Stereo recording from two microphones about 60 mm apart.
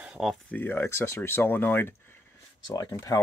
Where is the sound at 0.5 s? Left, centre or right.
Left.